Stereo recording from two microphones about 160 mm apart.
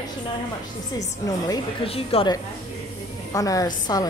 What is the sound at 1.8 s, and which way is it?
Speech, 35° left (ahead or behind).